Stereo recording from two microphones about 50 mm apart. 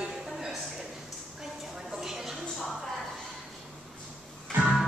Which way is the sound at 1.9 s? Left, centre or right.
Centre.